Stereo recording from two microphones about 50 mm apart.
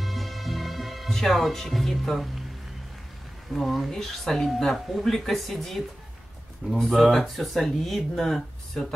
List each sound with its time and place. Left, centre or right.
0.0 s music: centre
3.5 s speech: centre